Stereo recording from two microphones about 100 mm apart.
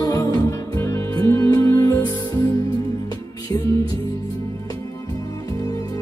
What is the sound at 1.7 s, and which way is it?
Music, 20° left (ahead or behind).